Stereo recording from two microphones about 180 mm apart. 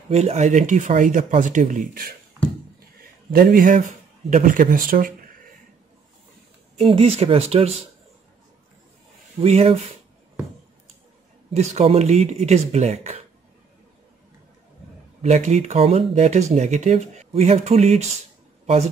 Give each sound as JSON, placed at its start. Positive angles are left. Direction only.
{"t": 0.1, "sound": "a man's voice", "side_deg": -35}
{"t": 3.3, "sound": "a man's voice", "side_deg": -55}
{"t": 6.8, "sound": "speech", "side_deg": -30}
{"t": 9.4, "sound": "speech", "side_deg": -35}
{"t": 11.5, "sound": "speech", "side_deg": -40}
{"t": 15.2, "sound": "speech", "side_deg": -40}